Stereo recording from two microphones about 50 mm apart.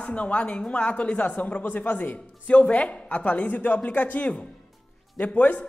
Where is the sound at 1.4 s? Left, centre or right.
Left.